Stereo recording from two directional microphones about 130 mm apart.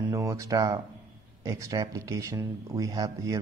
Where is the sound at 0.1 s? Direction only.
25° right (ahead or behind).